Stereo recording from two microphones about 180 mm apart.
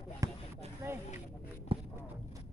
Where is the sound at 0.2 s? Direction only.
20° right (ahead or behind).